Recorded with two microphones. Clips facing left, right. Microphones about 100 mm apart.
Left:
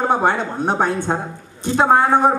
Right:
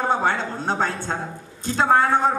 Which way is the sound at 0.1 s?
15° left (ahead or behind).